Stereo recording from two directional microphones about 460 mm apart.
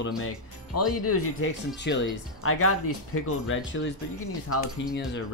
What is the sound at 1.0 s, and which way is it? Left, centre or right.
Speech, left.